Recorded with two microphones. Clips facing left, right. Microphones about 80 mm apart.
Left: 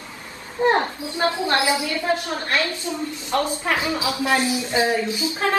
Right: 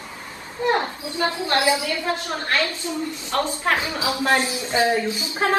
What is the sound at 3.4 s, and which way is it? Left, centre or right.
Speech, right.